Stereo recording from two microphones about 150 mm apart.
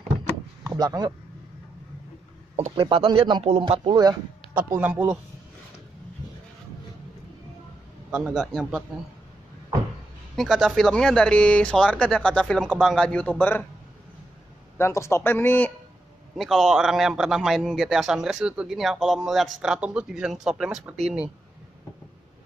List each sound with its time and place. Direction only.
0.7 s speech: 25° right (ahead or behind)
2.7 s speech: 35° right (ahead or behind)
4.6 s speech: 10° right (ahead or behind)
8.1 s a man's voice: 5° right (ahead or behind)
10.3 s a man's voice: centre (ahead or behind)
14.8 s speech: 20° left (ahead or behind)
16.3 s a man's voice: centre (ahead or behind)